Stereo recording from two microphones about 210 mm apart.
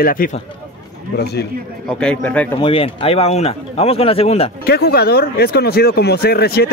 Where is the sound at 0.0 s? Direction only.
45° left (ahead or behind).